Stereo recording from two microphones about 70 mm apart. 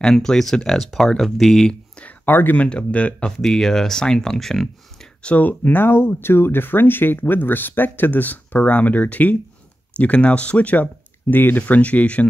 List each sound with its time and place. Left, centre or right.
0.0 s speech: centre
2.0 s speech: left
3.3 s speech: centre
5.3 s speech: left